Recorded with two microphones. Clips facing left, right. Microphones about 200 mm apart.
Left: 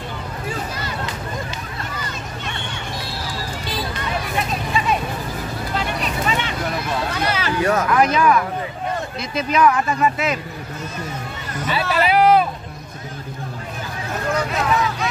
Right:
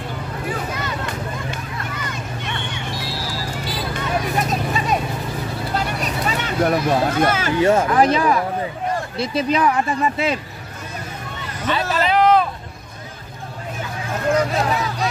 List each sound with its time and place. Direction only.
4.4 s vehicle: 40° right (ahead or behind)
5.8 s a sound: 40° right (ahead or behind)
7.6 s speech: 30° right (ahead or behind)
11.8 s a sound: 40° right (ahead or behind)
12.1 s hubbub: 10° left (ahead or behind)
14.3 s vehicle: 35° right (ahead or behind)